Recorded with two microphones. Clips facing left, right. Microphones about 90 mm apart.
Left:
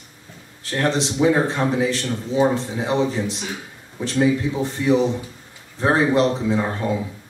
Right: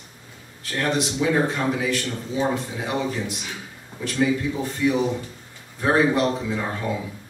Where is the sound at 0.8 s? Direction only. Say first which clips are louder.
Left 4 dB; 30° left (ahead or behind).